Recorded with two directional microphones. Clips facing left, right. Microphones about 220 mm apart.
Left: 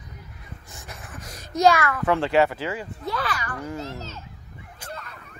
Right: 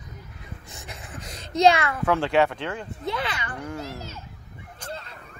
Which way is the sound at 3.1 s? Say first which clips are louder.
Even; 25° right (ahead or behind).